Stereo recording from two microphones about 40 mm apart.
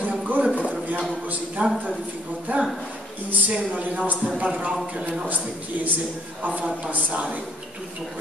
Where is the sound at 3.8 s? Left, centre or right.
Right.